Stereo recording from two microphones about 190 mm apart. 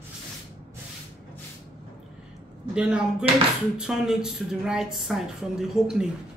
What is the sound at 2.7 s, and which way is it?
Speech, 5° right (ahead or behind).